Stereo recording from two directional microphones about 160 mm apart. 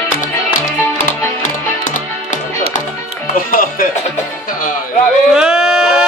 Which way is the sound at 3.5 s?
60° left (ahead or behind).